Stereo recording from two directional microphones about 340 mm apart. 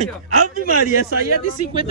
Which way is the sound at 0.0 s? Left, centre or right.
Right.